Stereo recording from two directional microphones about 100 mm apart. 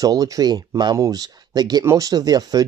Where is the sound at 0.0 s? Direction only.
35° right (ahead or behind).